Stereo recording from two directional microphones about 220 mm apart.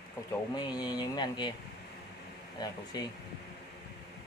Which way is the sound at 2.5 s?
15° left (ahead or behind).